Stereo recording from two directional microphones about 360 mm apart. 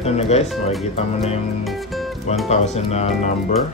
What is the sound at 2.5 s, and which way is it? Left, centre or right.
Speech, centre.